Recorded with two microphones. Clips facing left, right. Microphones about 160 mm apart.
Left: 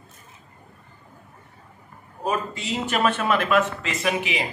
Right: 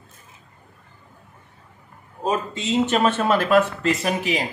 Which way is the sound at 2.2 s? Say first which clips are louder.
Right 3 dB; 25° right (ahead or behind).